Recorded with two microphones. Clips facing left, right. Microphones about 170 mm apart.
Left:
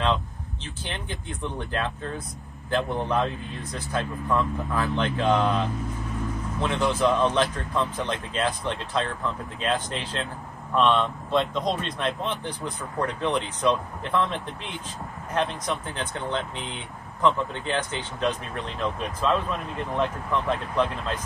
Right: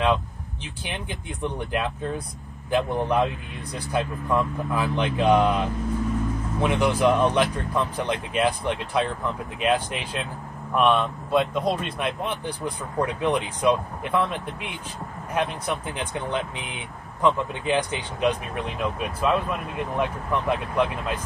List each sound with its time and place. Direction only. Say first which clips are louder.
0.8 s speech: right 2 dB; 15° right (ahead or behind)